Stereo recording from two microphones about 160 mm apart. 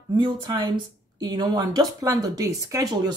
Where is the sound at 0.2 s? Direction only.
25° right (ahead or behind).